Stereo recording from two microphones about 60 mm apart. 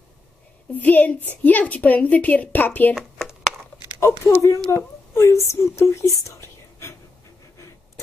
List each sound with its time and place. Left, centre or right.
0.7 s a woman's voice: left
2.9 s a sound: centre
4.0 s speech: left